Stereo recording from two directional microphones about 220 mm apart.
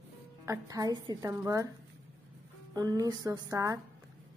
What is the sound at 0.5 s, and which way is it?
Speech, 15° right (ahead or behind).